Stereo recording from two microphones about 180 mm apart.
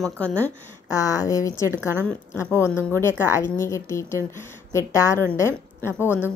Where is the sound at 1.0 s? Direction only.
20° left (ahead or behind).